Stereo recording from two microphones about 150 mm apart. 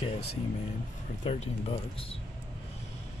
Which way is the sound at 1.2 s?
45° left (ahead or behind).